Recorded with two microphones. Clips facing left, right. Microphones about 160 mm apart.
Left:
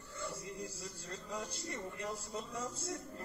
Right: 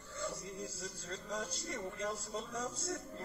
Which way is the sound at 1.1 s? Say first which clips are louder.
Right 2 dB; 15° left (ahead or behind).